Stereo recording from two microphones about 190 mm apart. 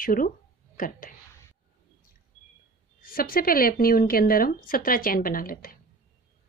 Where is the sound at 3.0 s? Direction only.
50° left (ahead or behind).